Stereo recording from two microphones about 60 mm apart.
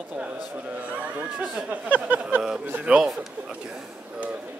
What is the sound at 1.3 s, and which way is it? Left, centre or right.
Speech, centre.